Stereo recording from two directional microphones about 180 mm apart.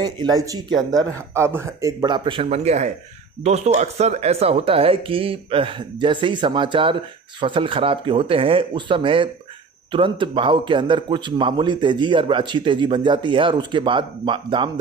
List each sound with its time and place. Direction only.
0.0 s speech: 20° right (ahead or behind)